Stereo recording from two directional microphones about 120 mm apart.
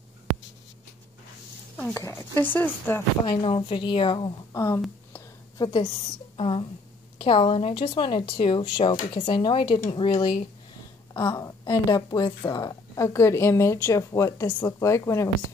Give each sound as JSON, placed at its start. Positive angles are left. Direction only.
{"t": 2.0, "sound": "speech", "side_deg": 25}
{"t": 3.3, "sound": "speech", "side_deg": 45}
{"t": 4.5, "sound": "a woman's voice", "side_deg": 30}
{"t": 6.3, "sound": "a woman's voice", "side_deg": 45}
{"t": 11.2, "sound": "a woman's voice", "side_deg": 30}